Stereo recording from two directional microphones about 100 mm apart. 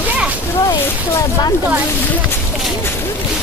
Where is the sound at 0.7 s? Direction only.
40° left (ahead or behind).